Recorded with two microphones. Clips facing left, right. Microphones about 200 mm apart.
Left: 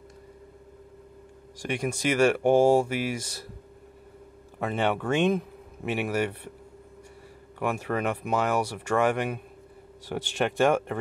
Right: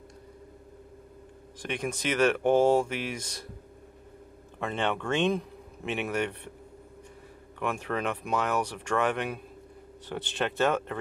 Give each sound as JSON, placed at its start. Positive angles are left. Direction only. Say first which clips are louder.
{"t": 1.6, "sound": "speech", "louder": "left 4 dB", "side_deg": 10}
{"t": 4.6, "sound": "speech", "louder": "left 3 dB", "side_deg": 5}
{"t": 7.5, "sound": "speech", "louder": "left 3 dB", "side_deg": 10}